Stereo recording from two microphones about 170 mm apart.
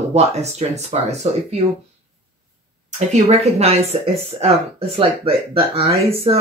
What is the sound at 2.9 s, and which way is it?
Speech, 40° right (ahead or behind).